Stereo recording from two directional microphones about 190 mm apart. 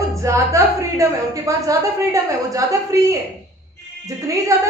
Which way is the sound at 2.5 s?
15° right (ahead or behind).